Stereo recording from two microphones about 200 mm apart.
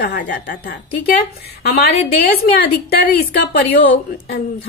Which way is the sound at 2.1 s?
55° left (ahead or behind).